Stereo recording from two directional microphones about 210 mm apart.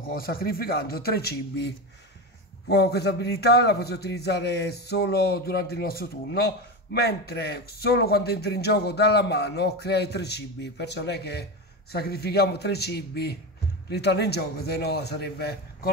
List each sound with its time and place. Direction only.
0.1 s a man's voice: 45° left (ahead or behind)
2.7 s a man's voice: 50° left (ahead or behind)